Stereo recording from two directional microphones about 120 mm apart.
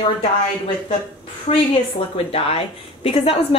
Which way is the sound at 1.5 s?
65° left (ahead or behind).